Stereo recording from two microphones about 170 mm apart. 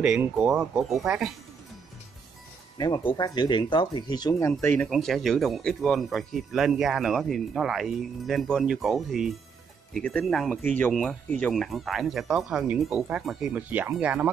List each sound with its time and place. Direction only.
0.0 s speech: 5° right (ahead or behind)
2.8 s speech: 25° left (ahead or behind)
4.5 s speech: 10° left (ahead or behind)
4.8 s speech: centre (ahead or behind)